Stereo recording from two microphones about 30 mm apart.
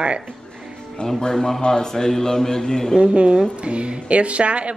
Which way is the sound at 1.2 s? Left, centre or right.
Left.